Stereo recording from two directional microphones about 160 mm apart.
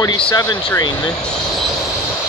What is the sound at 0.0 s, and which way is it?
Speech, 25° left (ahead or behind).